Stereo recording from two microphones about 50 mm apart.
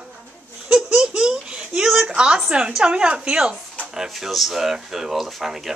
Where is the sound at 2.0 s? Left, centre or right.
Centre.